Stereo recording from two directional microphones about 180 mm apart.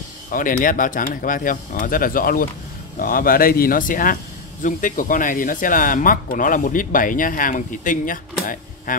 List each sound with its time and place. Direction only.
0.3 s speech: 50° left (ahead or behind)